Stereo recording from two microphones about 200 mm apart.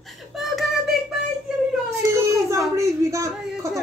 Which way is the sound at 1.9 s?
15° right (ahead or behind).